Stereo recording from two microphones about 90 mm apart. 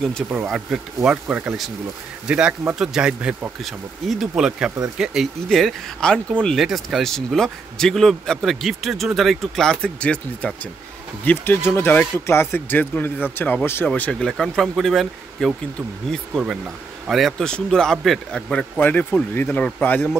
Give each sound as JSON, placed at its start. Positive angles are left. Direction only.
{"t": 0.5, "sound": "speech", "side_deg": -10}
{"t": 3.6, "sound": "speech", "side_deg": 0}
{"t": 11.2, "sound": "a man's voice", "side_deg": 25}
{"t": 14.2, "sound": "a man's voice", "side_deg": 5}
{"t": 18.8, "sound": "speech", "side_deg": 20}